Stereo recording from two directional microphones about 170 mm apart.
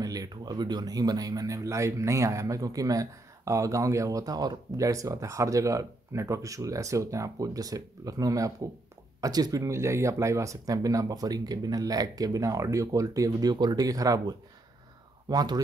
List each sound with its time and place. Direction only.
0.0 s speech: 20° right (ahead or behind)